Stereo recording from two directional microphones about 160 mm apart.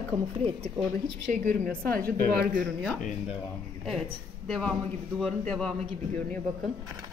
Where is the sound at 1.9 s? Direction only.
65° right (ahead or behind).